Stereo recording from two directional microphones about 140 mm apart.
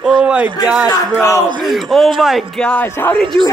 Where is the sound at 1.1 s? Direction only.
20° left (ahead or behind).